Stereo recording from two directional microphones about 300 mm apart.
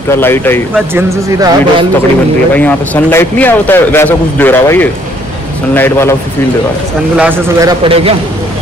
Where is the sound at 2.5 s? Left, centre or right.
Centre.